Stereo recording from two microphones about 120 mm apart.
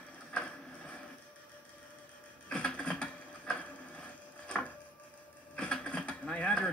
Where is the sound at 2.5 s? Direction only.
10° left (ahead or behind).